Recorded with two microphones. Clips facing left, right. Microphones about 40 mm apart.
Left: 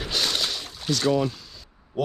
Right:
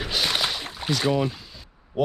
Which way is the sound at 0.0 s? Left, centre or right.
Centre.